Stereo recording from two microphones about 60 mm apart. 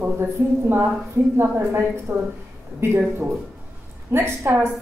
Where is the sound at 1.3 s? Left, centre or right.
Right.